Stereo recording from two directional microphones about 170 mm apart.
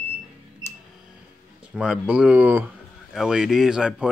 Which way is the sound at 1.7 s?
5° right (ahead or behind).